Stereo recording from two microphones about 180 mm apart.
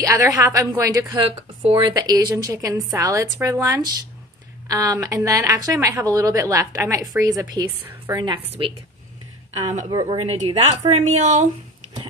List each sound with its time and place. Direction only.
0.0 s a woman's voice: 20° right (ahead or behind)
1.6 s a woman's voice: 30° right (ahead or behind)
9.8 s speech: 30° right (ahead or behind)